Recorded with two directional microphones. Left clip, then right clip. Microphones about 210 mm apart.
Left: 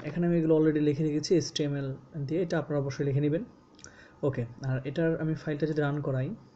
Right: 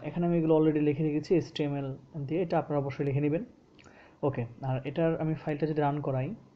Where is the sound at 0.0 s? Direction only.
5° right (ahead or behind).